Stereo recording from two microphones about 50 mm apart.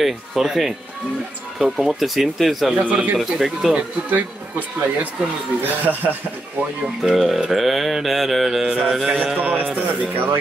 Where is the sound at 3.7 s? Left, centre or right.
Right.